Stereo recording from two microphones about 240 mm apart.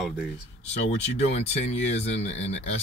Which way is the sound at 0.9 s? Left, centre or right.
Left.